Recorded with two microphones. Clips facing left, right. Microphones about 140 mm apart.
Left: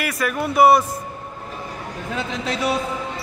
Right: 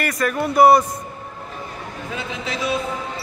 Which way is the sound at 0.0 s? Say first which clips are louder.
Right 2 dB; 5° left (ahead or behind).